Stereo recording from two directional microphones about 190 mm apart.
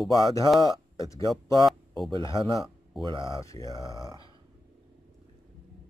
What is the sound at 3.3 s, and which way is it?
Speech, 15° left (ahead or behind).